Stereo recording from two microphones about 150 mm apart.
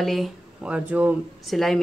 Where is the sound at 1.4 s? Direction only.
Centre (ahead or behind).